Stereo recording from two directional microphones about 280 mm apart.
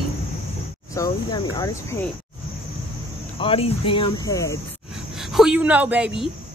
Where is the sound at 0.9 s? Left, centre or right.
Centre.